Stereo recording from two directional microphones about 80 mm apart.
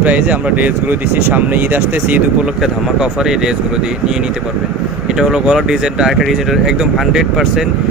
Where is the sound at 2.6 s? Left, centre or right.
Centre.